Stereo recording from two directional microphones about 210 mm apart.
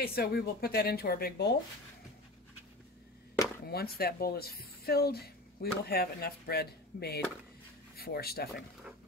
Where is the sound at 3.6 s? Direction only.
45° left (ahead or behind).